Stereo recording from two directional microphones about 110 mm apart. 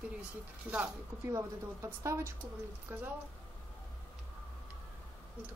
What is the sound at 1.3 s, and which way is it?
Speech, 25° right (ahead or behind).